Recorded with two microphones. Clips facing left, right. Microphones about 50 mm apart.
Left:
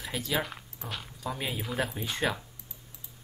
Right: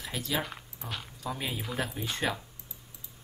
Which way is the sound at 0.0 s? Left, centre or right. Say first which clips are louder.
Left 2 dB; centre.